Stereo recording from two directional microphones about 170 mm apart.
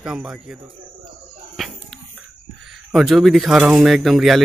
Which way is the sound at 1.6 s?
Centre (ahead or behind).